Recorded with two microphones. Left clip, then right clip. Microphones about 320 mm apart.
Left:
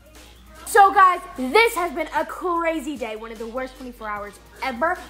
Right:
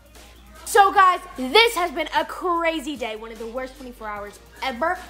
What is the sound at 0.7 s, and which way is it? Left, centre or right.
A woman's voice, centre.